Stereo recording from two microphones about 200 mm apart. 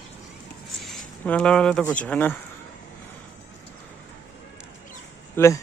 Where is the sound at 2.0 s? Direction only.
10° left (ahead or behind).